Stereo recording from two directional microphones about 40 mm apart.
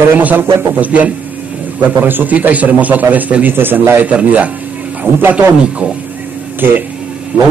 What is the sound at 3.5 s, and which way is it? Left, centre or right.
Speech, right.